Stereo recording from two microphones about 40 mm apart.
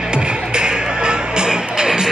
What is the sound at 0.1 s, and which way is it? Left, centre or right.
Music, right.